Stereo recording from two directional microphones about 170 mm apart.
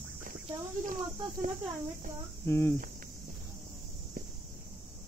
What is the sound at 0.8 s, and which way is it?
Speech, 50° right (ahead or behind).